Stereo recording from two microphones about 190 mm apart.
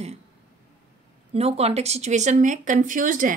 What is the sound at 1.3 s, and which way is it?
A woman's voice, 30° right (ahead or behind).